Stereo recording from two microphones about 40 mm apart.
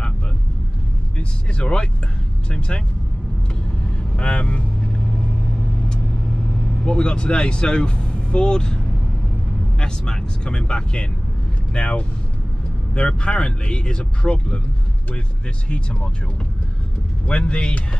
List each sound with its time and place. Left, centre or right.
1.1 s speech: left
4.2 s speech: left
6.8 s speech: left
15.7 s speech: left
17.3 s speech: left